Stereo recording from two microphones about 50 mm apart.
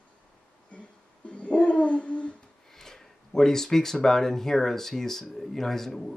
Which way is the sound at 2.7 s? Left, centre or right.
Centre.